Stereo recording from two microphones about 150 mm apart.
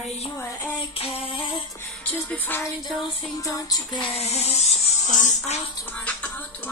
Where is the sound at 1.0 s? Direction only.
40° left (ahead or behind).